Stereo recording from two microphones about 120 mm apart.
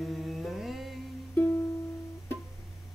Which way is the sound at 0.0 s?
Centre (ahead or behind).